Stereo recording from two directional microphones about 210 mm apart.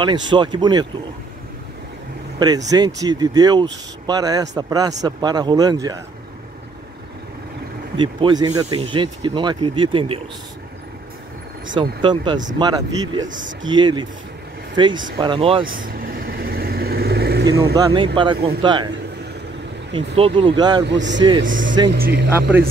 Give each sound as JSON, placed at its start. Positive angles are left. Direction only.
{"t": 0.0, "sound": "speech", "side_deg": -20}
{"t": 2.3, "sound": "speech", "side_deg": -20}
{"t": 8.0, "sound": "speech", "side_deg": -20}
{"t": 11.7, "sound": "speech", "side_deg": -20}
{"t": 13.3, "sound": "speech", "side_deg": -40}
{"t": 13.7, "sound": "speech", "side_deg": -20}
{"t": 15.6, "sound": "vehicle", "side_deg": -40}
{"t": 17.7, "sound": "speech", "side_deg": -20}
{"t": 19.9, "sound": "speech", "side_deg": -25}
{"t": 20.8, "sound": "a man's voice", "side_deg": -60}
{"t": 21.9, "sound": "speech", "side_deg": -50}